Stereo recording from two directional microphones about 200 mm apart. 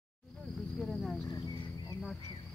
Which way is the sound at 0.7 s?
5° left (ahead or behind).